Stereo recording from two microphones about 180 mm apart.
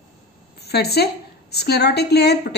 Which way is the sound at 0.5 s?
65° left (ahead or behind).